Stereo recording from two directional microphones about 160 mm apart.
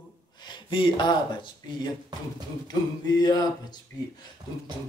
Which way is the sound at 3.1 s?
25° left (ahead or behind).